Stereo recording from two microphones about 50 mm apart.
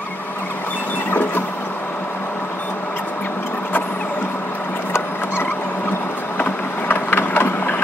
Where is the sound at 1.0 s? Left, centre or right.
Left.